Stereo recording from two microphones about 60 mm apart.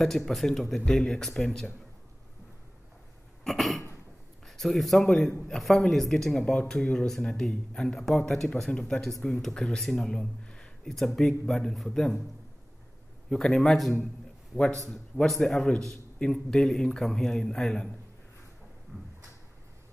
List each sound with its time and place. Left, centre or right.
0.0 s a man's voice: centre
3.4 s a man's voice: centre
10.9 s speech: centre
13.3 s a man's voice: centre
15.2 s a man's voice: centre